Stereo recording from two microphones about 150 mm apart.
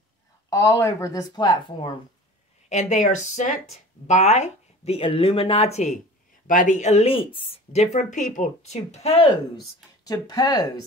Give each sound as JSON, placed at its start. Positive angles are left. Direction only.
{"t": 0.5, "sound": "speech", "side_deg": 20}
{"t": 2.7, "sound": "speech", "side_deg": 55}
{"t": 6.4, "sound": "speech", "side_deg": 60}
{"t": 10.0, "sound": "speech", "side_deg": 25}